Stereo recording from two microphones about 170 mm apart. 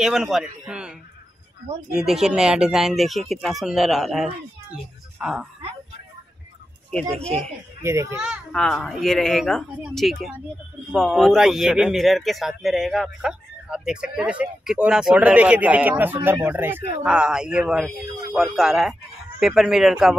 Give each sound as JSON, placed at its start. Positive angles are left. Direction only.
{"t": 0.0, "sound": "speech", "side_deg": -5}
{"t": 2.0, "sound": "speech", "side_deg": -5}
{"t": 6.9, "sound": "speech", "side_deg": 5}
{"t": 7.8, "sound": "a child's voice", "side_deg": -15}
{"t": 8.5, "sound": "speech", "side_deg": 5}